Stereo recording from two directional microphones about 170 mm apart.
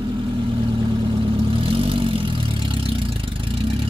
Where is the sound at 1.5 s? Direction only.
30° right (ahead or behind).